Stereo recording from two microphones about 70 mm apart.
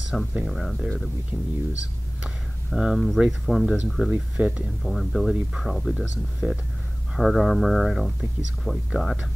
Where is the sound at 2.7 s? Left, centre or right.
Centre.